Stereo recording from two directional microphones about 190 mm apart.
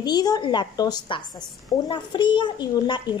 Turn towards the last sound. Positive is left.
turn(degrees=25)  # may be behind; listen again after turning